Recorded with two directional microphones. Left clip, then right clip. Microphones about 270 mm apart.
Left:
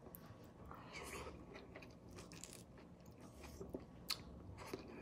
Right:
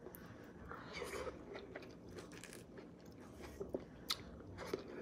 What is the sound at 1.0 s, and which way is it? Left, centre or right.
Gears, centre.